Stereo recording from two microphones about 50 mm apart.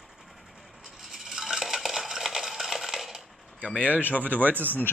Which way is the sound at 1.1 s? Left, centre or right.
Centre.